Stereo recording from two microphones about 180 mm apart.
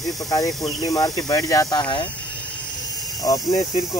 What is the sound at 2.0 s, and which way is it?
Vehicle, 10° left (ahead or behind).